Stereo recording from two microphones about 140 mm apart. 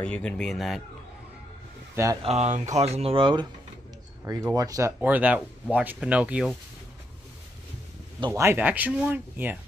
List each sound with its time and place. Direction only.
0.0 s speech: 10° left (ahead or behind)
2.2 s speech: 50° right (ahead or behind)
4.3 s speech: 25° right (ahead or behind)
8.3 s speech: 20° right (ahead or behind)